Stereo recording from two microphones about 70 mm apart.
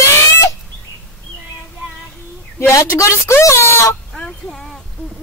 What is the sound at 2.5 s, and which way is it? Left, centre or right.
A woman's voice, left.